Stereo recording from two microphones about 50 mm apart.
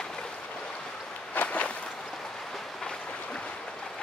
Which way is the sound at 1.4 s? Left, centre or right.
Left.